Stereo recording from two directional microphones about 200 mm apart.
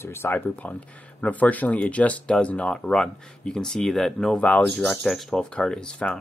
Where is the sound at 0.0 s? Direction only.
10° left (ahead or behind).